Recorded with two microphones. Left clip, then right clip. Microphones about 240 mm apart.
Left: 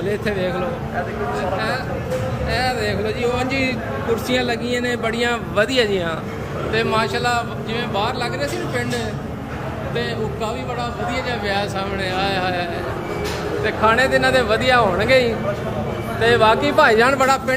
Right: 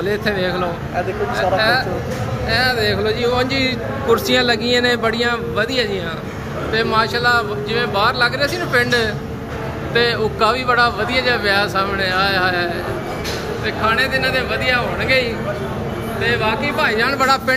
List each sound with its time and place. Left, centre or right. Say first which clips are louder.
0.1 s a man's voice: right 2 dB; centre
2.5 s a man's voice: right 5 dB; centre
13.7 s speech: left 1 dB; centre